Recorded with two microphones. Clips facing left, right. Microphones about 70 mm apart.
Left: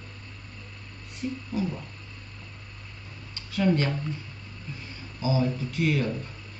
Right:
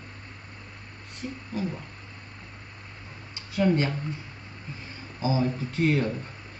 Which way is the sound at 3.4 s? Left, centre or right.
Right.